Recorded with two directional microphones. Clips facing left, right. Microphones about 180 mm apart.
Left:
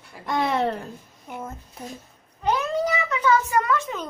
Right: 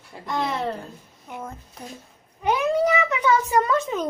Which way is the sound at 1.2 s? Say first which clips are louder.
Even; 5° left (ahead or behind).